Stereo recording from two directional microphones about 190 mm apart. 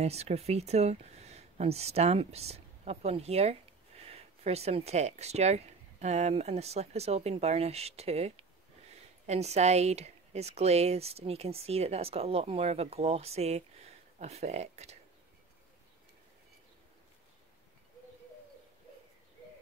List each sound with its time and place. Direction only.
0.0 s a woman's voice: 35° right (ahead or behind)